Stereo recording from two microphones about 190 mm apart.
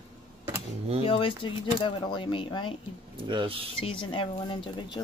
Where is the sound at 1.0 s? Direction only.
30° left (ahead or behind).